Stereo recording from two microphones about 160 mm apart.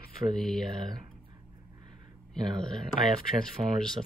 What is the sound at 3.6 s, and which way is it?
Speech, 30° right (ahead or behind).